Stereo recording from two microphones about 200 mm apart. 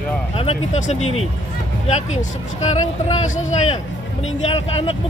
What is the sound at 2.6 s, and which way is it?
Speech, 35° left (ahead or behind).